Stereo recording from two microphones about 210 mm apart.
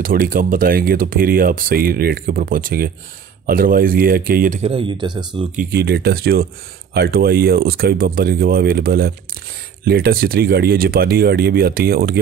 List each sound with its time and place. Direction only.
0.0 s speech: 45° right (ahead or behind); by 5.5 s 20° right (ahead or behind)
5.6 s speech: 50° right (ahead or behind)